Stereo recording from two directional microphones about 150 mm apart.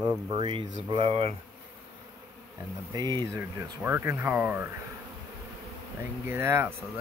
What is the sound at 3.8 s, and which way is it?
Speech, 15° right (ahead or behind).